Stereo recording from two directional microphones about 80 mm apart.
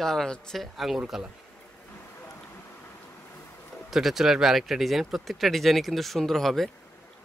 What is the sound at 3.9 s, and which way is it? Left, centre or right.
A man's voice, centre.